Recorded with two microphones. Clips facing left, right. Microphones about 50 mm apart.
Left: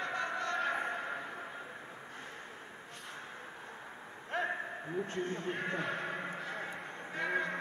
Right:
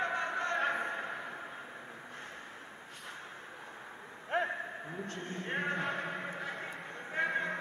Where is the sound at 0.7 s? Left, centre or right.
Centre.